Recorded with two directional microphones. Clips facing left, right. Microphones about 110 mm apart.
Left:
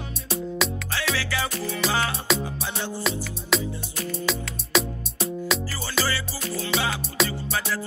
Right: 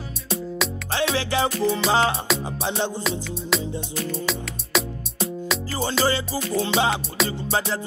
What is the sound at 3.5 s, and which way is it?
Music, centre (ahead or behind).